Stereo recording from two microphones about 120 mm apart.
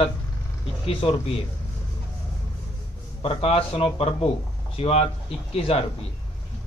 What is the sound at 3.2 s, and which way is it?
A man's voice, 55° left (ahead or behind).